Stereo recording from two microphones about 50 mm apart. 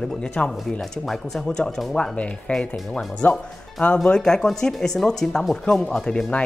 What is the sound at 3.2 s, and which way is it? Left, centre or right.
Speech, left.